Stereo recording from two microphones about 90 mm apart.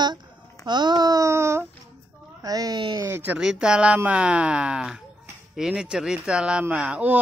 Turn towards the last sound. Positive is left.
turn(degrees=-15)  # may be behind; listen again after turning